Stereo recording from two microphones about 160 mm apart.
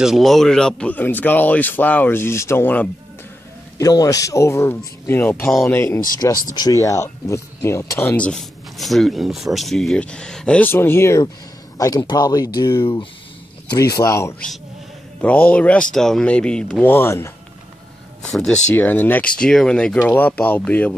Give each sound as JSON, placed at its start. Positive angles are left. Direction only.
{"t": 0.0, "sound": "speech", "side_deg": 0}
{"t": 3.7, "sound": "speech", "side_deg": 20}
{"t": 15.2, "sound": "speech", "side_deg": 10}
{"t": 16.9, "sound": "speech", "side_deg": 15}
{"t": 18.3, "sound": "speech", "side_deg": 5}